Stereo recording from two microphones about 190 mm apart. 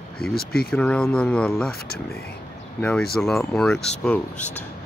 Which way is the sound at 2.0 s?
55° left (ahead or behind).